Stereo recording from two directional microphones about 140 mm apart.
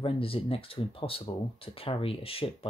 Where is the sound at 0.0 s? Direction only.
40° left (ahead or behind).